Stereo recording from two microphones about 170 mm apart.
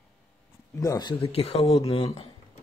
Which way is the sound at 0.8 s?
20° left (ahead or behind).